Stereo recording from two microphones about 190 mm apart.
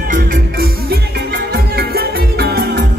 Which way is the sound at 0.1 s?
55° right (ahead or behind).